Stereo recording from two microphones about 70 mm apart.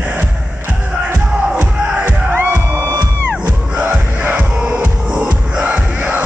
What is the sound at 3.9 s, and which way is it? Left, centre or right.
Music, centre.